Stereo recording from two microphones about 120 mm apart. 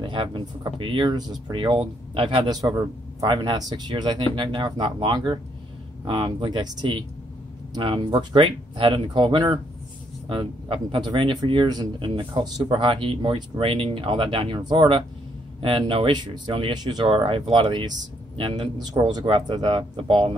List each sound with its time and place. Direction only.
0.0 s speech: 45° right (ahead or behind)
2.6 s a man's voice: 30° right (ahead or behind); by 20.3 s 50° right (ahead or behind)